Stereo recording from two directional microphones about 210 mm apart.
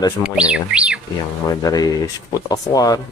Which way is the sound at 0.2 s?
5° right (ahead or behind).